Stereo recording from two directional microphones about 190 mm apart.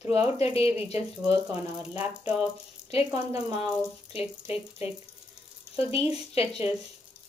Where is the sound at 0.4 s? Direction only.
30° left (ahead or behind).